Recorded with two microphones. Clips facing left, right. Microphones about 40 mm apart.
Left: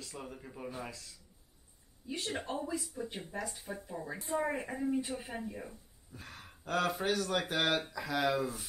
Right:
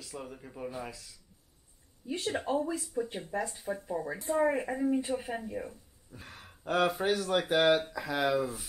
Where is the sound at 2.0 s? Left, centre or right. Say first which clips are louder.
Right 5 dB; centre.